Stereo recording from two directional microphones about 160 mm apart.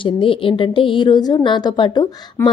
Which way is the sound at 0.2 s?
35° left (ahead or behind).